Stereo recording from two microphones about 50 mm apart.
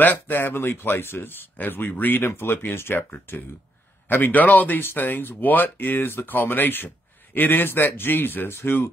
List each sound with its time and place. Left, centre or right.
0.0 s speech: left